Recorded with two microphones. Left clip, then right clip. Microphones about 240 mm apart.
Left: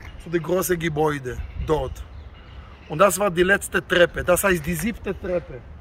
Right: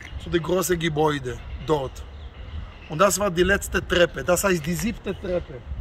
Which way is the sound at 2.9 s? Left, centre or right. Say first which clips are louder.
Left 2 dB; centre.